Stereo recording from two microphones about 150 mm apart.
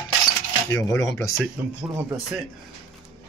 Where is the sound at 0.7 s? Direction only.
20° left (ahead or behind).